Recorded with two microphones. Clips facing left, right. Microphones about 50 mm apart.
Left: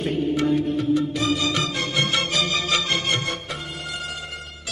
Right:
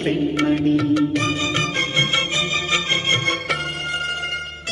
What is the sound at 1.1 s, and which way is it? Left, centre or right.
Music, right.